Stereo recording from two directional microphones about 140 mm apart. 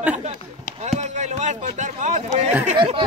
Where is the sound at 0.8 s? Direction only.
55° right (ahead or behind).